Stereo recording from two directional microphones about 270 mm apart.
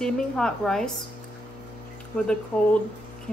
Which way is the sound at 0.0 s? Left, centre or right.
Centre.